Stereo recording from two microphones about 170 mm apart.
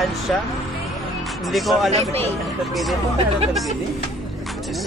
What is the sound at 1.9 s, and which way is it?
Speech, 35° right (ahead or behind).